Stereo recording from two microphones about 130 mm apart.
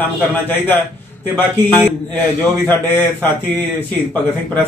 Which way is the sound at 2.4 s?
15° left (ahead or behind).